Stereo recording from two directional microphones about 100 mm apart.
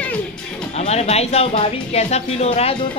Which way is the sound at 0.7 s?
90° left.